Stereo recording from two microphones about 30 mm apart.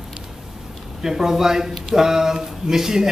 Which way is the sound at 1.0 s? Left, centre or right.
Centre.